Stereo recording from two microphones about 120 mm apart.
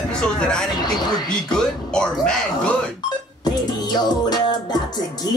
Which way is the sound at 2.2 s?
5° left (ahead or behind).